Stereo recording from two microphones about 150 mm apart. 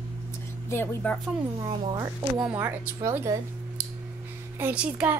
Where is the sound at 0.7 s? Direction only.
15° left (ahead or behind).